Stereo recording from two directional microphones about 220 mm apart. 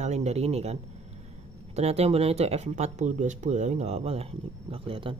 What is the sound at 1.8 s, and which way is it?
Speech, 30° right (ahead or behind).